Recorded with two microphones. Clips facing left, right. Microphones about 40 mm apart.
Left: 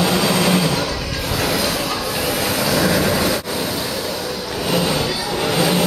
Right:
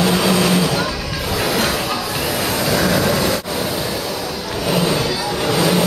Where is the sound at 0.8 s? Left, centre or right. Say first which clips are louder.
Right 1 dB; centre.